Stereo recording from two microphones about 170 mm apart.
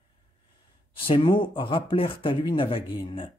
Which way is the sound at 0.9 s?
30° left (ahead or behind).